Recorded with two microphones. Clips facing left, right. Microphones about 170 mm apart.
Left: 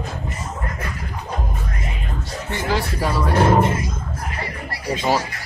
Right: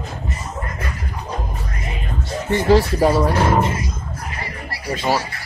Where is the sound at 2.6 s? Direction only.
30° right (ahead or behind).